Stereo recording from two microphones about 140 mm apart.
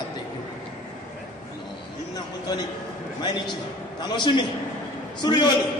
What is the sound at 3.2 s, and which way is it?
A man's voice, 30° left (ahead or behind).